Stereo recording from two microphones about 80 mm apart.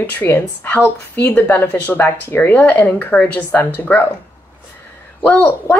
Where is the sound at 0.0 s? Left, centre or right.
Left.